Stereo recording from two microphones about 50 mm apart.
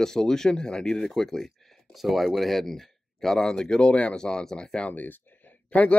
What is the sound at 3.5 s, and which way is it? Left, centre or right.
Speech, centre.